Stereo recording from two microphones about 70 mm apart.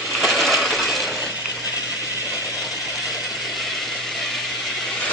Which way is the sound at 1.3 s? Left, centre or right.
Right.